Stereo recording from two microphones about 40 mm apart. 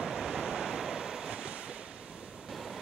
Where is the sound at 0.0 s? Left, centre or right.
Centre.